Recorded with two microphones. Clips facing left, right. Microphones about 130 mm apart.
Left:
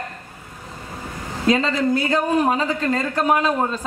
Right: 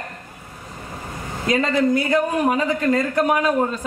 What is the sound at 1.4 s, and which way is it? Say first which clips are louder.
A man's voice: even; 30° left (ahead or behind).